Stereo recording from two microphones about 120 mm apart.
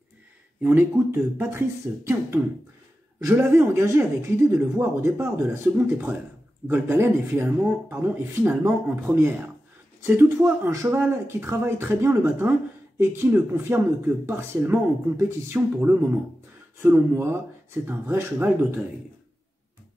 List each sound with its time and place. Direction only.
0.6 s speech: 15° right (ahead or behind)